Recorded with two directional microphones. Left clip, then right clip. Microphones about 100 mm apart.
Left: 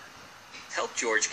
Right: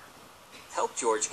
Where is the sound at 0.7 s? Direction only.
15° right (ahead or behind).